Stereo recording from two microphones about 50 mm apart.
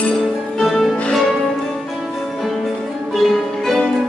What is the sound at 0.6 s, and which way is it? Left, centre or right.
Music, centre.